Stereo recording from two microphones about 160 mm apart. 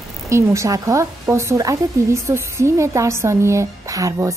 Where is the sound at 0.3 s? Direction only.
20° right (ahead or behind).